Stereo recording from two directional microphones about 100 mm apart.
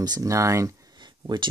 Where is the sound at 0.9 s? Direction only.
50° right (ahead or behind).